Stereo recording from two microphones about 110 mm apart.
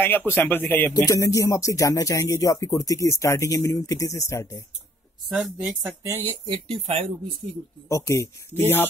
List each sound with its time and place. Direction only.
0.0 s speech: 20° left (ahead or behind)
1.0 s speech: 30° left (ahead or behind)
5.3 s speech: 5° right (ahead or behind)
6.7 s speech: 60° right (ahead or behind)
7.4 s speech: 45° right (ahead or behind)
7.9 s speech: 25° left (ahead or behind)